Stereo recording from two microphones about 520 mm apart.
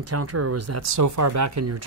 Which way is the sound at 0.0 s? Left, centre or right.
Right.